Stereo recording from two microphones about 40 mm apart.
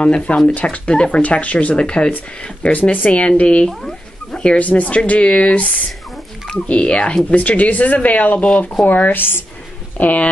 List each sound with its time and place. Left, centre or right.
0.0 s speech: left
2.6 s speech: left
3.2 s speech: left
4.3 s a sound: left
4.6 s speech: left
6.7 s speech: left
9.9 s speech: left